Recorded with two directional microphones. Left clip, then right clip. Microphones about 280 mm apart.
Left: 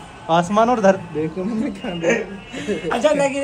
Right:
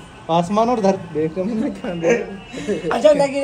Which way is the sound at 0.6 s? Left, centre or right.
Left.